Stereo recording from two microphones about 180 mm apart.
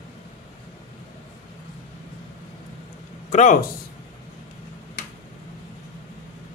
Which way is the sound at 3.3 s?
45° left (ahead or behind).